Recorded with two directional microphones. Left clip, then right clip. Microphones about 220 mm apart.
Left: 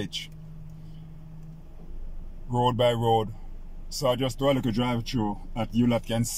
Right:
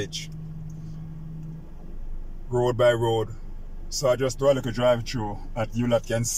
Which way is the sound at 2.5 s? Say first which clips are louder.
Right 3 dB; 15° left (ahead or behind).